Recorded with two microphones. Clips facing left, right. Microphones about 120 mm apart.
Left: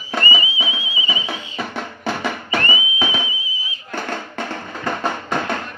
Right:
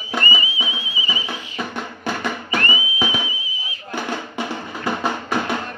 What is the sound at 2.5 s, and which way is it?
Music, 25° left (ahead or behind).